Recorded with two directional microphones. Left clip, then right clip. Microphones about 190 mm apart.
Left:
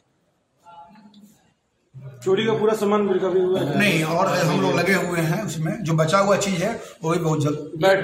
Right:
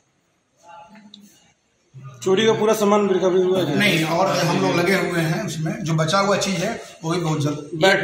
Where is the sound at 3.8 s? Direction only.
Centre (ahead or behind).